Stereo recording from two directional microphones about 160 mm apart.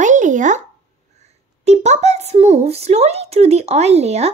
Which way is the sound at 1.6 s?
45° right (ahead or behind).